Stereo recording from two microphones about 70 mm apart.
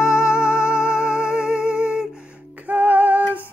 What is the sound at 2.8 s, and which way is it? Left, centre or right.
Female singing, right.